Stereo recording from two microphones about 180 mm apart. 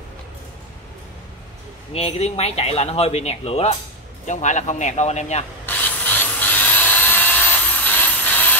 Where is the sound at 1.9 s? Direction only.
35° left (ahead or behind).